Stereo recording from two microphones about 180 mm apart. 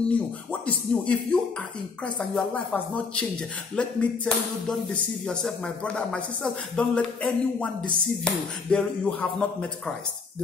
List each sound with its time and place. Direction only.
0.0 s speech: 5° left (ahead or behind)